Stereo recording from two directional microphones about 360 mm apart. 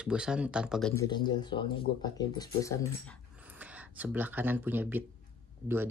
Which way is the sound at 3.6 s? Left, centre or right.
Centre.